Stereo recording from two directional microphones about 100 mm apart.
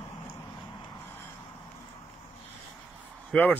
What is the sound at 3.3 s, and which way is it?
Speech, 10° left (ahead or behind).